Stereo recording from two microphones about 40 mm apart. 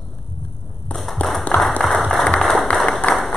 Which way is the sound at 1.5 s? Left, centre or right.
Left.